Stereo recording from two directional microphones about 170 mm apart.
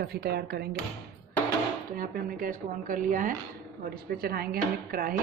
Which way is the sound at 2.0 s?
55° right (ahead or behind).